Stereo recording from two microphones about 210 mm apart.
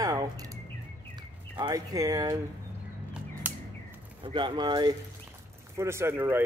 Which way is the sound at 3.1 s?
10° right (ahead or behind).